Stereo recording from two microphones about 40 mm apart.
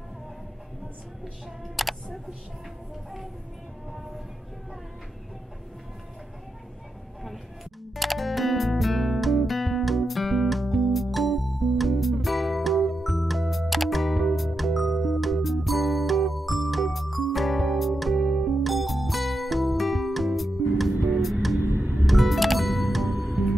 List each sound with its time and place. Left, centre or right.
1.8 s speech: centre
7.9 s music: centre
21.6 s music: right
22.0 s music: centre